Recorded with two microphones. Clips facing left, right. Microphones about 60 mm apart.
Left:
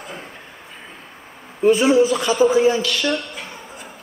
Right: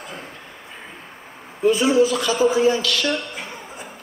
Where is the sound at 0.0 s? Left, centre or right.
Centre.